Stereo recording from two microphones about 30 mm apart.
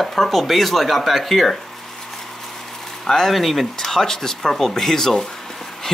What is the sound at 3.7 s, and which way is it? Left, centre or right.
Speech, centre.